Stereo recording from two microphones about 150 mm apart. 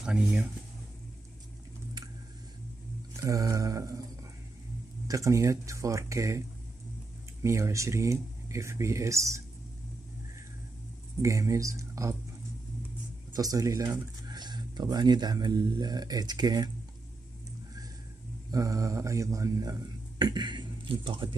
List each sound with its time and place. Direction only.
0.0 s speech: 5° right (ahead or behind)
3.2 s mantra: 20° right (ahead or behind)
5.0 s speech: 20° right (ahead or behind)
7.4 s speech: 20° right (ahead or behind)
11.2 s speech: 20° right (ahead or behind)
13.3 s speech: 25° right (ahead or behind)
18.5 s speech: 20° right (ahead or behind)